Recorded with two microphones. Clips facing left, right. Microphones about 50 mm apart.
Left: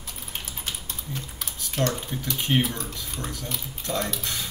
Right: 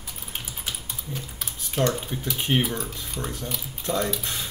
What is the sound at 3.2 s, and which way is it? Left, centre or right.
Speech, right.